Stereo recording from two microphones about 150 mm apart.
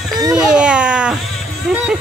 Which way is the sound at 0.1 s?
25° right (ahead or behind).